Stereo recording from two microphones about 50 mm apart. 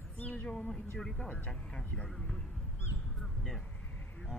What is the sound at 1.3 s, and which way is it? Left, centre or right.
Speech, left.